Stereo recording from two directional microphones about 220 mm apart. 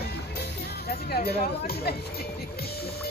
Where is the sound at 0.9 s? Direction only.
45° left (ahead or behind).